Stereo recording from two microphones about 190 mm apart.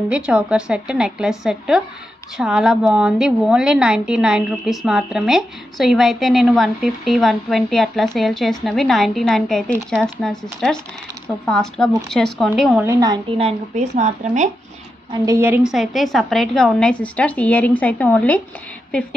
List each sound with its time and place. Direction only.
0.1 s a woman's voice: 5° right (ahead or behind)
12.8 s a woman's voice: 15° right (ahead or behind)
13.4 s a woman's voice: 35° right (ahead or behind)
15.2 s a woman's voice: 15° right (ahead or behind)
15.7 s a woman's voice: centre (ahead or behind)